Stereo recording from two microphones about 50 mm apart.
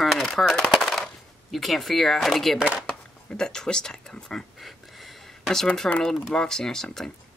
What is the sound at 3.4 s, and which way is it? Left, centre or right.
Speech, centre.